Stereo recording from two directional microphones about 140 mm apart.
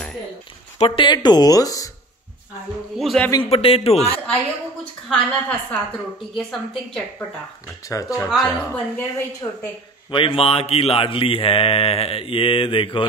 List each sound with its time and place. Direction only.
0.7 s mantra: 40° left (ahead or behind); by 1.9 s 25° left (ahead or behind)
3.0 s a woman's voice: centre (ahead or behind)
3.4 s a man's voice: 45° left (ahead or behind)
5.1 s a woman's voice: 10° left (ahead or behind)
7.9 s speech: 25° left (ahead or behind)
8.3 s a woman's voice: 5° left (ahead or behind)
9.4 s speech: 25° left (ahead or behind)
10.1 s mantra: 40° left (ahead or behind)